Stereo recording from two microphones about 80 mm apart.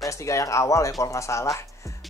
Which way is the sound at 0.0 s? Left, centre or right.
Left.